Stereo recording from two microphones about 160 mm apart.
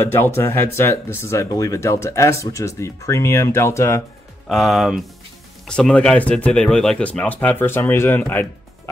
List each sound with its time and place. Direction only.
0.1 s speech: 15° left (ahead or behind)
4.5 s speech: centre (ahead or behind)